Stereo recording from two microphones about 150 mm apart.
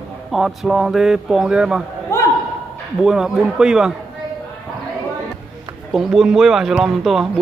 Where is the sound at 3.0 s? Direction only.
5° right (ahead or behind).